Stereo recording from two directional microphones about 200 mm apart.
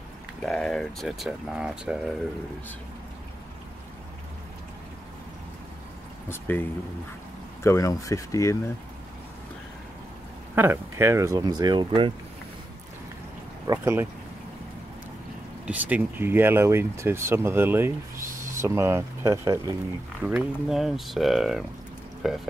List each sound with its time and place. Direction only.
0.4 s speech: 5° left (ahead or behind)
6.2 s speech: 10° left (ahead or behind)
10.5 s speech: 10° right (ahead or behind)
13.7 s speech: 15° right (ahead or behind)
15.6 s speech: 10° right (ahead or behind)